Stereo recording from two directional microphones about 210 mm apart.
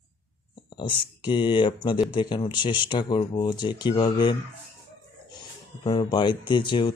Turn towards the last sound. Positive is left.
turn(degrees=20)  # may be behind; listen again after turning